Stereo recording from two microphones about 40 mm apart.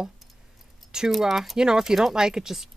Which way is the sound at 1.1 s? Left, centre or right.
Centre.